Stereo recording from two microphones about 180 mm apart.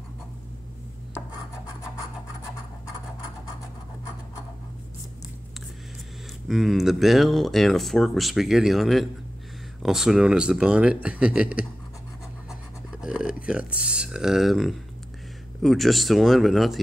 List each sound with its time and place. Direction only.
6.4 s speech: centre (ahead or behind)
13.0 s speech: 5° right (ahead or behind)